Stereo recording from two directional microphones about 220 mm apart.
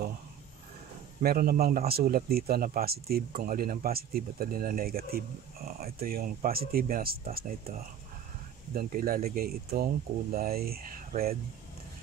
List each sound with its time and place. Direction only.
1.2 s a man's voice: 45° right (ahead or behind)
8.7 s a man's voice: 40° right (ahead or behind)